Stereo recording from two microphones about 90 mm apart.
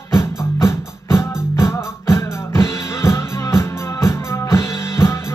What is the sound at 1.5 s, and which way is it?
Music, 30° left (ahead or behind).